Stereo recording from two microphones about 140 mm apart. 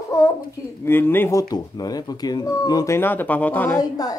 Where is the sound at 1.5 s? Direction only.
30° left (ahead or behind); by 3.7 s 10° left (ahead or behind).